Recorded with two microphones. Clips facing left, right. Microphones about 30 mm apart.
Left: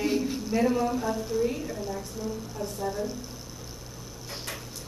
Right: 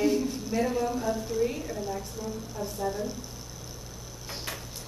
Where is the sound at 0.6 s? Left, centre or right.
Centre.